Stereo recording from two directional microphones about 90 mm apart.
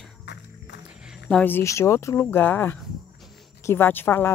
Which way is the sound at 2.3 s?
20° left (ahead or behind).